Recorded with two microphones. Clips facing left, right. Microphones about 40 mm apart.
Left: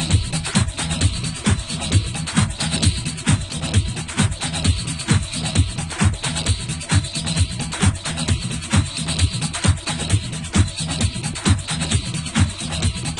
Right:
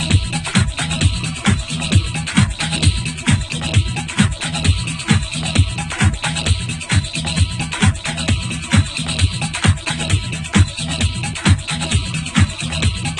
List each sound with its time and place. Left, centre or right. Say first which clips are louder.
0.0 s music: right 4 dB; right